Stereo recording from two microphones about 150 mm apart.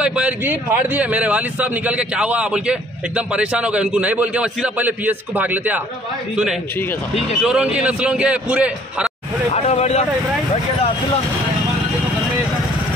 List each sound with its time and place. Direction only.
0.0 s a man's voice: 5° right (ahead or behind)
9.5 s speech: 45° left (ahead or behind)